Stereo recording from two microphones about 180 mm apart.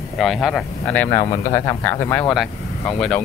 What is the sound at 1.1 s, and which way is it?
Speech, 20° left (ahead or behind).